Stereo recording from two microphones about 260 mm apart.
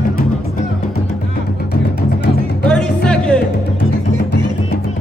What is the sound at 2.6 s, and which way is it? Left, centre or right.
Music, centre.